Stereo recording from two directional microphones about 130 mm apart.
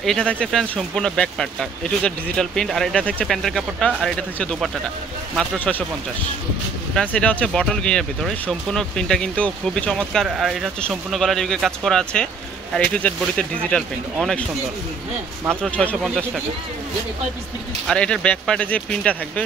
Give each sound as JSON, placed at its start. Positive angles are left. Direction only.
{"t": 0.0, "sound": "speech", "side_deg": 5}
{"t": 7.0, "sound": "speech", "side_deg": 10}
{"t": 15.6, "sound": "speech", "side_deg": 10}
{"t": 17.8, "sound": "speech", "side_deg": 5}